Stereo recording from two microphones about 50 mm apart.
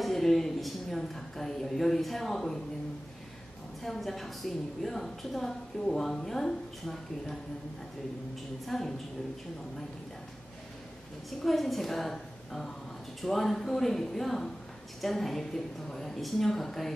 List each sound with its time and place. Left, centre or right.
0.0 s a woman's voice: centre
3.8 s a woman's voice: centre
8.6 s a woman's voice: centre
11.2 s a woman's voice: centre